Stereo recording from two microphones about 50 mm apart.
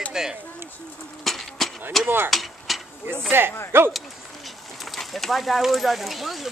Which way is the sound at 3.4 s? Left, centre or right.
Right.